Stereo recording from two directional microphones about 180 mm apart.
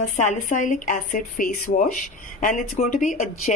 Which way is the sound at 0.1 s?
40° left (ahead or behind).